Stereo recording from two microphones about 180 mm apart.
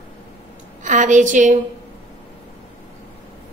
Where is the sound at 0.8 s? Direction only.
45° right (ahead or behind).